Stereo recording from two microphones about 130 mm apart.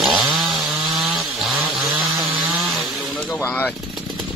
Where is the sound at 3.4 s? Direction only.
15° left (ahead or behind).